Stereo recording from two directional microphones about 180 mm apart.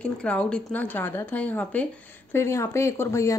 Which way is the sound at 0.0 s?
5° left (ahead or behind).